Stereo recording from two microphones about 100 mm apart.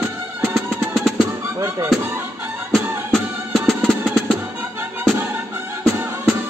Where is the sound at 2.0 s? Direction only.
20° right (ahead or behind).